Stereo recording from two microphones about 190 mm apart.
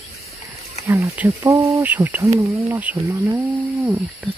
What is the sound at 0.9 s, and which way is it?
Speech, 15° right (ahead or behind).